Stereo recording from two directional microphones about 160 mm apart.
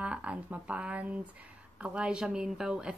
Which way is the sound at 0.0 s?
5° right (ahead or behind).